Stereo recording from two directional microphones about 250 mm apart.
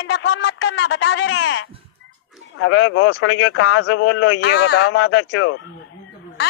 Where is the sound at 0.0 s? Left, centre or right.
Left.